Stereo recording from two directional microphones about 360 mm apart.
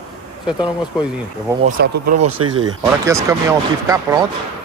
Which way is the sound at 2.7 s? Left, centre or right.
Centre.